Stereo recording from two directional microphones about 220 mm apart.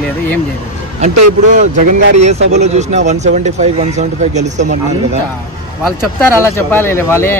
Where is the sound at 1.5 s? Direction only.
30° right (ahead or behind).